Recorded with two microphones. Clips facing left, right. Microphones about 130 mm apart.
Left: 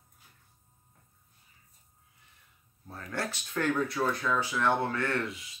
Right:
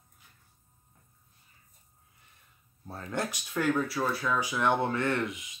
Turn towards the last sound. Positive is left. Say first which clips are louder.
# right 2 dB
turn(degrees=-20)  # may be behind; listen again after turning